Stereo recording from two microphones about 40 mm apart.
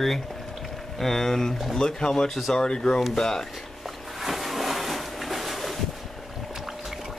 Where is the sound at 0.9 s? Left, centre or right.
Centre.